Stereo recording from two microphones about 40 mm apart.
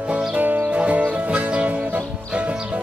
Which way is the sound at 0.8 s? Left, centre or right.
Right.